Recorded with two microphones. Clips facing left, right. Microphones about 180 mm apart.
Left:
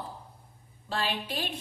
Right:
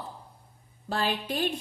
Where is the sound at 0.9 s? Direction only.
45° right (ahead or behind).